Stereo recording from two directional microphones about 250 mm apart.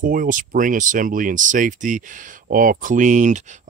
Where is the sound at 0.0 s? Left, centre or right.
Right.